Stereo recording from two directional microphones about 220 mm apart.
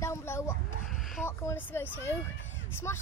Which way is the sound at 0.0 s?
10° left (ahead or behind).